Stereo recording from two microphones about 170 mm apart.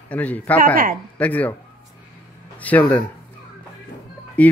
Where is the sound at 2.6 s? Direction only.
10° left (ahead or behind).